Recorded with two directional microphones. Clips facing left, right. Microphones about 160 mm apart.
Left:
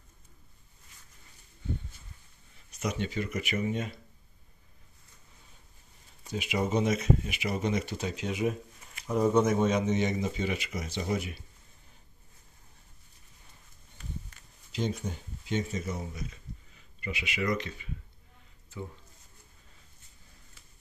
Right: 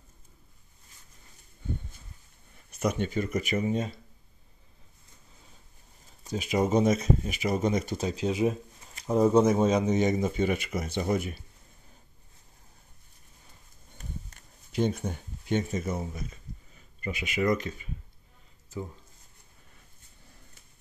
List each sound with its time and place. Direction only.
2.7 s speech: 50° right (ahead or behind); by 3.9 s 35° right (ahead or behind)
6.2 s speech: 40° right (ahead or behind)
13.9 s a sound: 45° right (ahead or behind)